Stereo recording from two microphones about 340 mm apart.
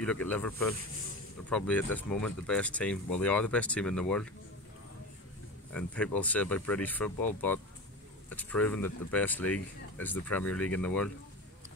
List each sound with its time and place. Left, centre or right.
0.0 s speech: centre
5.7 s speech: centre